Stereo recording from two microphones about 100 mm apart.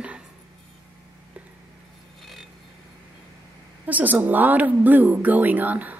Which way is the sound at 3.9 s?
15° right (ahead or behind).